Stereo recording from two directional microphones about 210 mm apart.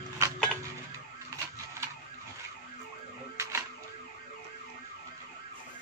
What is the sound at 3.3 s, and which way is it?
Music, 15° right (ahead or behind).